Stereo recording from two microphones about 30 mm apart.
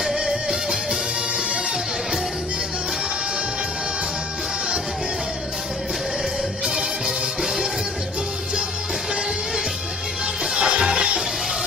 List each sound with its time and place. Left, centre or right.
0.3 s music: centre
10.5 s music: right